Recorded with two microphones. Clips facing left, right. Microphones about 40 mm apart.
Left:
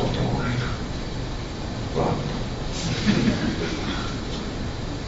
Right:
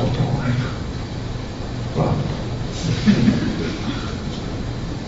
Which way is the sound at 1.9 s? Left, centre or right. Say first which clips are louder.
Right 3 dB; centre.